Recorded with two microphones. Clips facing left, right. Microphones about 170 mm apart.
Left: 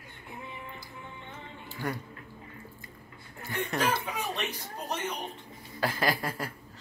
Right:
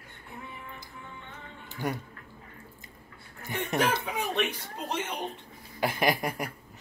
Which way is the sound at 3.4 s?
20° right (ahead or behind).